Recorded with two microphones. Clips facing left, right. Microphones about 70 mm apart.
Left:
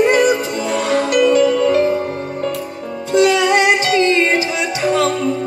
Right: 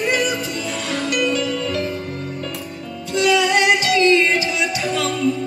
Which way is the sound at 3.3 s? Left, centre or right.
Left.